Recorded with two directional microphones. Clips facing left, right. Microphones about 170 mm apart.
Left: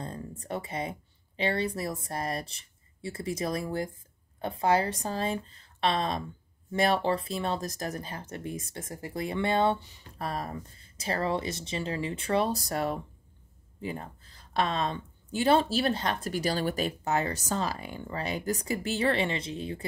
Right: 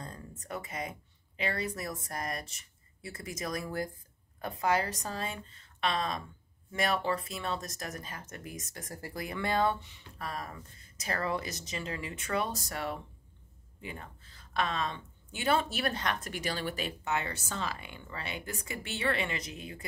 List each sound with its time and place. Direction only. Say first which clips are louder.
0.0 s speech: left 7 dB; 30° left (ahead or behind)